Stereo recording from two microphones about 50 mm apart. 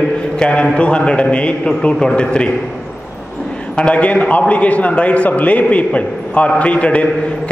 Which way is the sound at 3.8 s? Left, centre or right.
Left.